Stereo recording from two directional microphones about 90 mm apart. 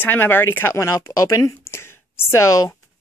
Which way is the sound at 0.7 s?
35° left (ahead or behind).